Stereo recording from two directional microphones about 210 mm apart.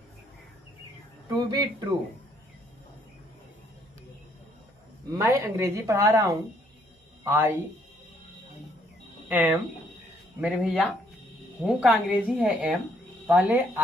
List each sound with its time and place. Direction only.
1.3 s speech: 20° right (ahead or behind)
5.1 s speech: 15° right (ahead or behind)
10.4 s a woman's voice: 5° right (ahead or behind)